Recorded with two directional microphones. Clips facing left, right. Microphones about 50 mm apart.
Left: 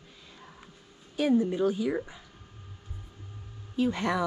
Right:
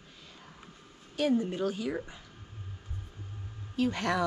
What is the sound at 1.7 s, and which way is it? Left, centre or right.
Speech, centre.